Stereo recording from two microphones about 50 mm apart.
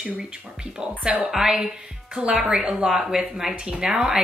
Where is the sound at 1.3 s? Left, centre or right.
Centre.